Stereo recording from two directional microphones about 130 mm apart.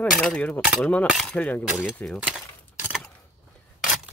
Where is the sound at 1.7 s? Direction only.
5° right (ahead or behind).